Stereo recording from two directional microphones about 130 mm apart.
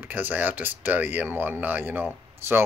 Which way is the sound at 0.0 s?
15° right (ahead or behind).